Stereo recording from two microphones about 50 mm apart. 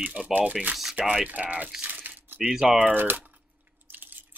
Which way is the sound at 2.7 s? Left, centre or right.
Right.